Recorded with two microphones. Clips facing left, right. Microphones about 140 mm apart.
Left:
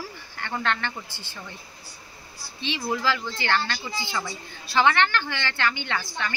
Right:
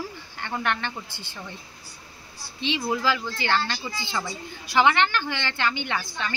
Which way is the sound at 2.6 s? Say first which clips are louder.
Right 2 dB; 20° right (ahead or behind).